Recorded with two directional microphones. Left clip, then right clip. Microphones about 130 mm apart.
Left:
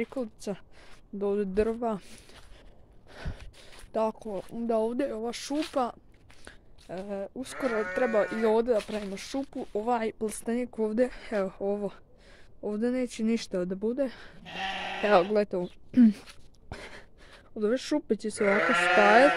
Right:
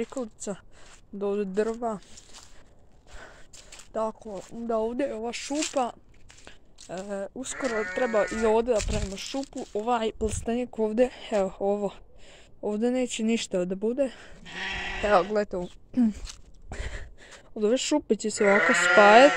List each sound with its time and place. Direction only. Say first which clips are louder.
0.0 s speech: right 1 dB; 5° left (ahead or behind)
1.7 s speech: even; 30° left (ahead or behind)
3.9 s speech: left 1 dB; 40° left (ahead or behind)
4.6 s speech: even; 20° left (ahead or behind)
4.9 s speech: right 2 dB; 5° left (ahead or behind)
7.5 s speech: even; 5° left (ahead or behind)
9.1 s speech: right 1 dB; 10° left (ahead or behind)
9.9 s speech: right 3 dB; 10° right (ahead or behind)
15.0 s speech: even; 25° left (ahead or behind)
15.9 s speech: left 4 dB; 45° left (ahead or behind)
16.8 s speech: right 4 dB; 15° right (ahead or behind)